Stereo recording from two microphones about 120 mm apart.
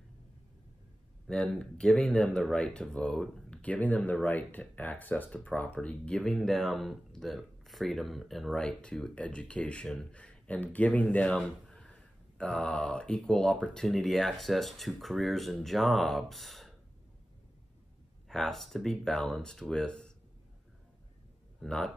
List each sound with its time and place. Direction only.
1.2 s speech: 5° left (ahead or behind)
18.3 s speech: centre (ahead or behind)
21.5 s speech: 5° left (ahead or behind)